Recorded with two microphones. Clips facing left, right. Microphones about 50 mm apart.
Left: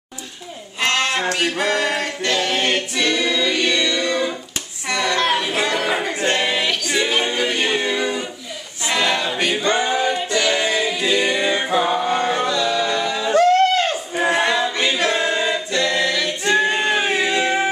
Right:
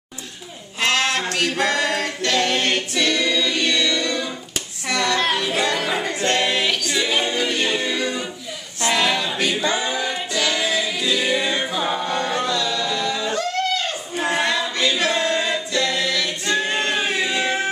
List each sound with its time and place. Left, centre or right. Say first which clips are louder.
0.7 s a sound: even; centre
1.3 s male singing: left 1 dB; centre
1.6 s a capella: left 1 dB; centre
4.8 s music: left 1 dB; centre
6.9 s a capella: left 2 dB; centre
7.9 s music: left 2 dB; centre
8.8 s a capella: even; centre
9.6 s singing: left 3 dB; centre
10.1 s music: left 3 dB; centre
13.3 s a sound: left 8 dB; left
14.1 s choir: left 2 dB; centre
15.0 s a capella: left 1 dB; centre
16.6 s a sound: left 3 dB; centre